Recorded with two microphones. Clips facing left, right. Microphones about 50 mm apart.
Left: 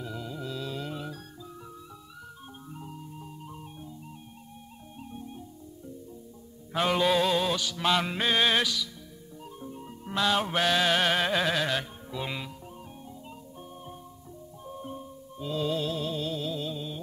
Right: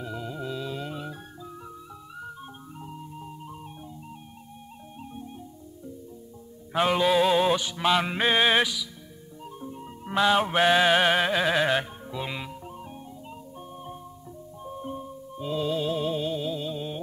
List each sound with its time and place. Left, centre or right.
0.0 s music: centre
2.8 s music: centre
5.1 s music: centre
6.7 s mantra: centre
7.8 s music: centre
11.6 s music: right
12.1 s music: centre
14.6 s music: centre
15.9 s music: centre
16.7 s music: right